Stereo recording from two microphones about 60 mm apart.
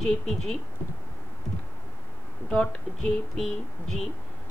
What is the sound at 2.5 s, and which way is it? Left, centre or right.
Speech, left.